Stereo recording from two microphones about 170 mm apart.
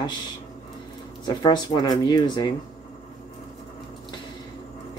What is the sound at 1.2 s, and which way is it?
Speech, 25° left (ahead or behind).